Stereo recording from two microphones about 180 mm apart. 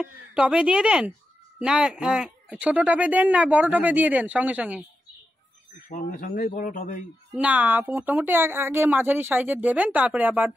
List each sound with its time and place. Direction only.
0.0 s speech: 5° right (ahead or behind)
5.9 s speech: 45° left (ahead or behind)
7.3 s speech: 10° right (ahead or behind)